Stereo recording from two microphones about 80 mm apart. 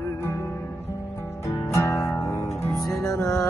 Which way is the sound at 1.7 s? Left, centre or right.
Left.